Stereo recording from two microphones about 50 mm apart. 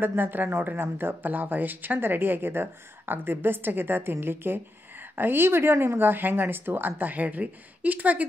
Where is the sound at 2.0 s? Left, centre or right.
Right.